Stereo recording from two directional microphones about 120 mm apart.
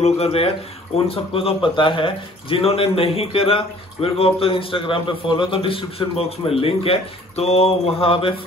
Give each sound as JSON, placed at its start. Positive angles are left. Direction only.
{"t": 0.0, "sound": "speech", "side_deg": 55}